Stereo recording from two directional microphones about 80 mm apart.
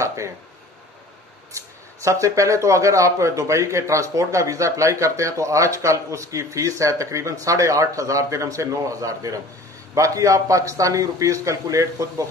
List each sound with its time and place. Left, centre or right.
0.0 s speech: right
2.0 s a man's voice: right